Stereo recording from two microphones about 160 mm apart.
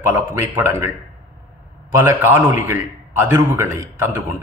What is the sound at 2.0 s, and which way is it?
Speech, 15° right (ahead or behind).